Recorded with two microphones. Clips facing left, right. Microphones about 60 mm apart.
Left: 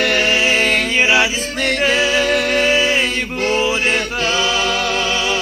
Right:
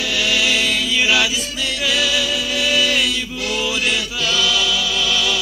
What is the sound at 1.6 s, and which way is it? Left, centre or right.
Music, left.